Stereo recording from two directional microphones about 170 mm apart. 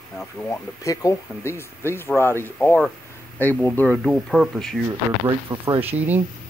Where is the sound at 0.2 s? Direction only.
10° left (ahead or behind).